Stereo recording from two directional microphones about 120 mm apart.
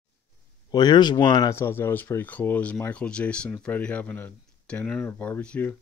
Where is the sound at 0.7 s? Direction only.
35° left (ahead or behind).